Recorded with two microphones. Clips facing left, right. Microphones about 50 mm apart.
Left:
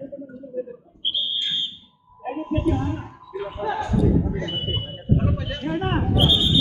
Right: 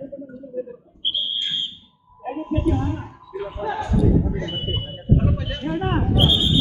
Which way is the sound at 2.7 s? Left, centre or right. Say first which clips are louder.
Right 1 dB; centre.